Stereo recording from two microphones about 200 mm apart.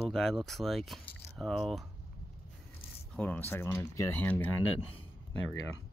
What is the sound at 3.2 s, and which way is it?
Speech, 10° left (ahead or behind).